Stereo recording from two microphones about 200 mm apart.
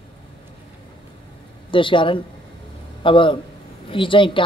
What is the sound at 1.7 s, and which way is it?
A man's voice, 25° left (ahead or behind).